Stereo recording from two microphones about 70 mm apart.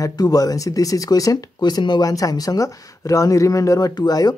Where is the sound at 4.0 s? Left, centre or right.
Left.